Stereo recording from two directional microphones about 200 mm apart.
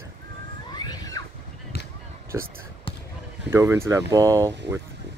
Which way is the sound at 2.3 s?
15° right (ahead or behind).